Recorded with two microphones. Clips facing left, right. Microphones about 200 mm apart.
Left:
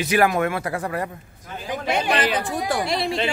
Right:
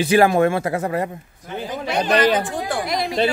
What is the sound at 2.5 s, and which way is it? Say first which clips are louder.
Speech: even; 30° left (ahead or behind).